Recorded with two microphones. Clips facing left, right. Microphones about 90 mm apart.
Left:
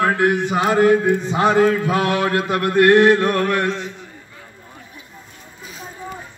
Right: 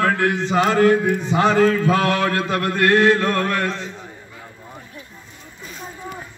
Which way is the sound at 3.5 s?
15° left (ahead or behind).